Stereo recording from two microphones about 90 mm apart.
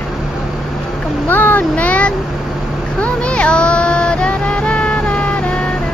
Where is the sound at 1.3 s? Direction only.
20° left (ahead or behind).